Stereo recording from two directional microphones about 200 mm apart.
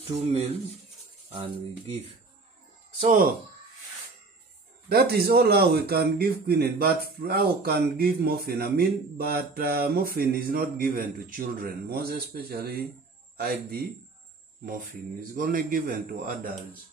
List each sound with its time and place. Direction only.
0.1 s speech: 25° right (ahead or behind)
3.0 s a man's voice: 40° right (ahead or behind)
4.8 s a man's voice: 50° right (ahead or behind)
15.3 s a man's voice: 45° right (ahead or behind)